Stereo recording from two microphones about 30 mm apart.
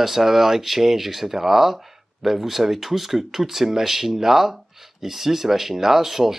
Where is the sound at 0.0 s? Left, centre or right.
Centre.